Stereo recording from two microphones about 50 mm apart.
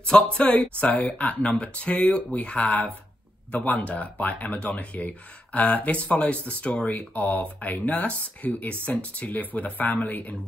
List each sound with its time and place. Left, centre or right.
0.0 s speech: left